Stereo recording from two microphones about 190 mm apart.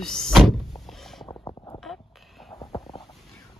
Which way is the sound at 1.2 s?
20° left (ahead or behind).